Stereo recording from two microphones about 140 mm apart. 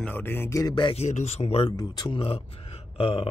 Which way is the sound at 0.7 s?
35° left (ahead or behind).